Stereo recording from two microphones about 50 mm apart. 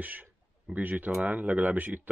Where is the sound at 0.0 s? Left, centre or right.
Right.